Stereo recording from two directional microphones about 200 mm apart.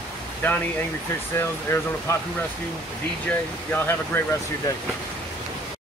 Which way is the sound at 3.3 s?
10° left (ahead or behind).